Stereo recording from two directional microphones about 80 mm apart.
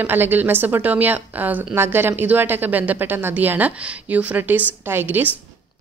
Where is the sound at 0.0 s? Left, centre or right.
Right.